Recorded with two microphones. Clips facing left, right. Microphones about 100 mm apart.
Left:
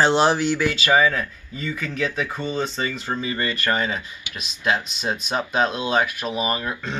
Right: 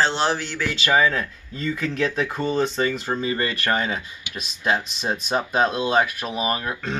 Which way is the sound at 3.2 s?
35° right (ahead or behind).